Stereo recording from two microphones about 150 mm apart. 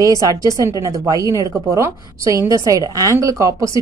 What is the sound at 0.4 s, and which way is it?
A woman's voice, 20° right (ahead or behind).